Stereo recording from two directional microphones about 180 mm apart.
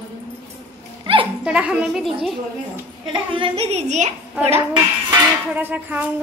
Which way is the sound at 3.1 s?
30° right (ahead or behind).